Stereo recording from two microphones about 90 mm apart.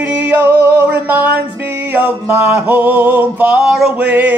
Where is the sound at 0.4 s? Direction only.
25° right (ahead or behind); by 3.9 s 5° right (ahead or behind).